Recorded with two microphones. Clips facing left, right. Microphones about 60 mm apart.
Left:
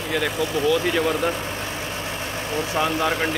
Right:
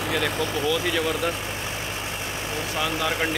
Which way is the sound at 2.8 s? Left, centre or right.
Left.